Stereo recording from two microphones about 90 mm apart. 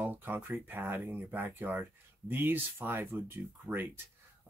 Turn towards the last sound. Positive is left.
turn(degrees=-20)  # may be behind; listen again after turning